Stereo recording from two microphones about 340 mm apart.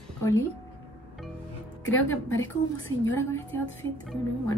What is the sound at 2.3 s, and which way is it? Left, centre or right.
Speech, left.